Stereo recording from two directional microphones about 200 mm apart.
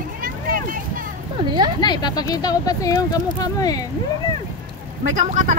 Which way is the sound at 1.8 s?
20° left (ahead or behind).